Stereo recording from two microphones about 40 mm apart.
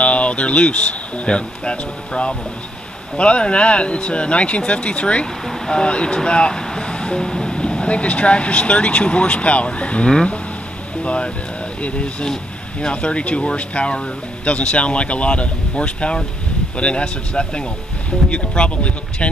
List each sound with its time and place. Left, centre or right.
0.0 s speech: left
11.8 s speech: left